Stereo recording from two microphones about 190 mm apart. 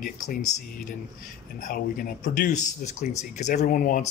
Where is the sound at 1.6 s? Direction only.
50° left (ahead or behind).